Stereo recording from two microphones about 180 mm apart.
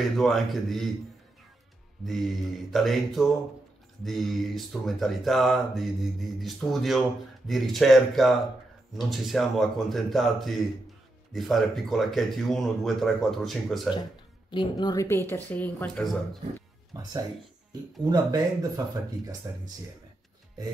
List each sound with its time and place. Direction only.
0.2 s speech: centre (ahead or behind)
2.0 s speech: centre (ahead or behind)
14.5 s speech: 25° left (ahead or behind); by 16.2 s 5° left (ahead or behind)
18.0 s speech: 20° right (ahead or behind)